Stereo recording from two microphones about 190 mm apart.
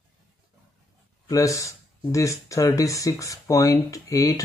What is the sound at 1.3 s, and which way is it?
Speech, 15° left (ahead or behind).